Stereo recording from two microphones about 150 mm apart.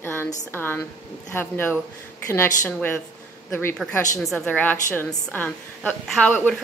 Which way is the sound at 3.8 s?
5° left (ahead or behind).